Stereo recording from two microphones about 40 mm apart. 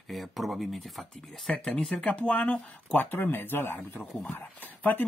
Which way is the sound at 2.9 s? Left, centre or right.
Left.